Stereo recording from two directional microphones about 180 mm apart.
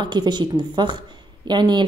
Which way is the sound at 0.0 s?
25° right (ahead or behind).